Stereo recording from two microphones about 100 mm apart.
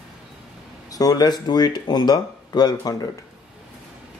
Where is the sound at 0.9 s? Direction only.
40° left (ahead or behind).